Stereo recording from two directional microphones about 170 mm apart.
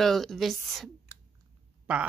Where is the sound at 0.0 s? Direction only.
Centre (ahead or behind).